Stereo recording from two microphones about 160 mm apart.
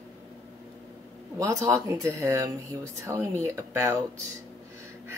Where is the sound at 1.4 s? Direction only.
20° right (ahead or behind).